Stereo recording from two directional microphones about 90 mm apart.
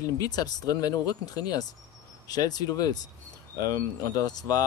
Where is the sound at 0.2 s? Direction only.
45° left (ahead or behind).